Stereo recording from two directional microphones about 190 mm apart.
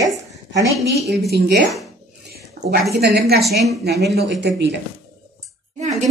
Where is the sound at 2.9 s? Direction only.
60° right (ahead or behind).